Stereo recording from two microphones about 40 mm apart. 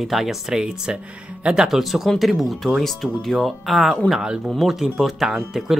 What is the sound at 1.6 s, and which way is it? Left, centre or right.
Speech, centre.